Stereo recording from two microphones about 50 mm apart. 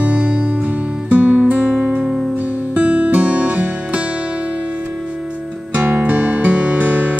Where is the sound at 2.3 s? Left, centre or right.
Right.